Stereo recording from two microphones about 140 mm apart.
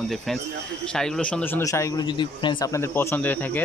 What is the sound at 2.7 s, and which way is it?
Speech, 20° left (ahead or behind).